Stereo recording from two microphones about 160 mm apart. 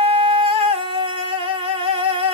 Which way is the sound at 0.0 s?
35° right (ahead or behind).